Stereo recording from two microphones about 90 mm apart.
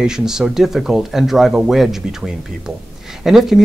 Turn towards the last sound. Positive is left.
turn(degrees=-5)  # may be behind; listen again after turning